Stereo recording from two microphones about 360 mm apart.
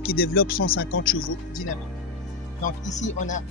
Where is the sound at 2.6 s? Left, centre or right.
Centre.